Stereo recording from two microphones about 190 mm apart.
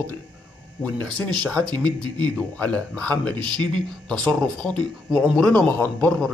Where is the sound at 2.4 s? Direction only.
5° left (ahead or behind).